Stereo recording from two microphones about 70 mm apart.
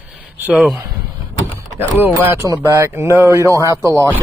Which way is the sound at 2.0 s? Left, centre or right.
Right.